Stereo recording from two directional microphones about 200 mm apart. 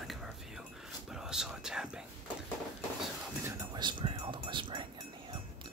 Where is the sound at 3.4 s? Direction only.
20° right (ahead or behind).